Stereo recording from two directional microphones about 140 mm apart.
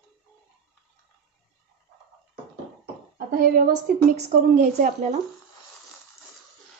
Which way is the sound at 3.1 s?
90° right.